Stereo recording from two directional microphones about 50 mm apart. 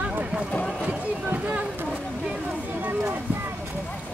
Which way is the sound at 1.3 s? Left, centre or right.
Right.